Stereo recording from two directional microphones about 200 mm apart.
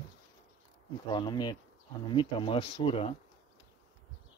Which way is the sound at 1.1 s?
20° left (ahead or behind).